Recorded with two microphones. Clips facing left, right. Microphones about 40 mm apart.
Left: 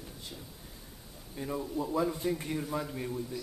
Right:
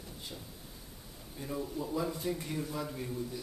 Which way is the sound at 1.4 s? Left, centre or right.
Centre.